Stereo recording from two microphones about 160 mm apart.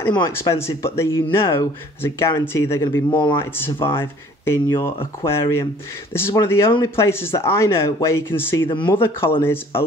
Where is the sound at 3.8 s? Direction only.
15° left (ahead or behind).